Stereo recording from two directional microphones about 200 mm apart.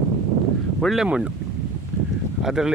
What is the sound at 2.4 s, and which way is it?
Speech, centre (ahead or behind).